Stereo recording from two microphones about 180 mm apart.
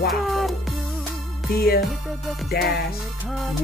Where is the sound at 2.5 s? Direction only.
60° left (ahead or behind).